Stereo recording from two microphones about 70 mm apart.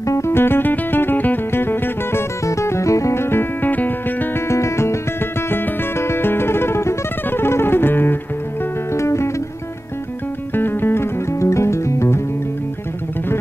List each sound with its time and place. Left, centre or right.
0.0 s music: left
2.4 s music: left
4.5 s music: left
8.9 s music: left
10.5 s music: left
11.3 s music: left